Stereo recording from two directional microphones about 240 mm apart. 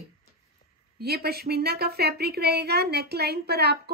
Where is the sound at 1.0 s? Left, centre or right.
Right.